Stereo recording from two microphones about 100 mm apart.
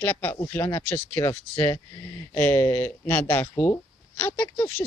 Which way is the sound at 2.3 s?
20° left (ahead or behind).